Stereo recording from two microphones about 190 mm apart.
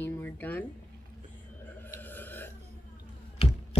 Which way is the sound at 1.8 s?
10° left (ahead or behind).